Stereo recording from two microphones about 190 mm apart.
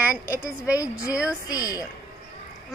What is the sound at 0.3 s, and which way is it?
A woman's voice, 15° left (ahead or behind).